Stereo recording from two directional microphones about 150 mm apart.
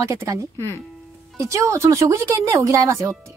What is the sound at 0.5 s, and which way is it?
Speech, 15° left (ahead or behind).